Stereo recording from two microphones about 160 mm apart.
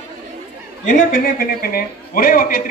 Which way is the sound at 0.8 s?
50° left (ahead or behind).